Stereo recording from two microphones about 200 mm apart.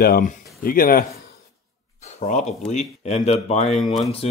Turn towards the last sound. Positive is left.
turn(degrees=0)  # may be behind; listen again after turning